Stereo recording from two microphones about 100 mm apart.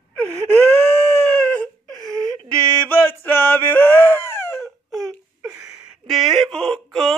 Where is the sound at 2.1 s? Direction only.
35° right (ahead or behind).